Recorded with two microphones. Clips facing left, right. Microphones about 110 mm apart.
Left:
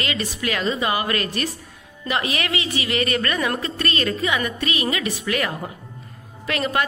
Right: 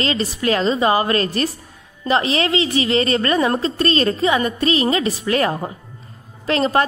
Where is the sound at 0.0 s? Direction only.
30° right (ahead or behind).